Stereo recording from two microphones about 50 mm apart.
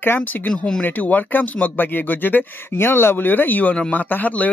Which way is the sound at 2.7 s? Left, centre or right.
Left.